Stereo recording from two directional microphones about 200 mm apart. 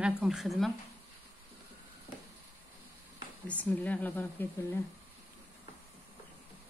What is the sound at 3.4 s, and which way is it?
Speech, 10° left (ahead or behind).